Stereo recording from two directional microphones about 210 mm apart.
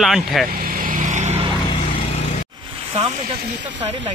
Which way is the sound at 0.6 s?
40° right (ahead or behind).